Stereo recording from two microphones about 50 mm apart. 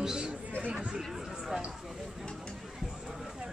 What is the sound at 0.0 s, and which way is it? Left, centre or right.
Chatter, centre.